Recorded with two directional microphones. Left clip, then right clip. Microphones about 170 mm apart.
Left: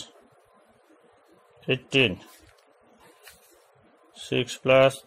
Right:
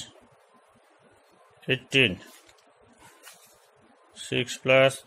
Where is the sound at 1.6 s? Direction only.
15° left (ahead or behind).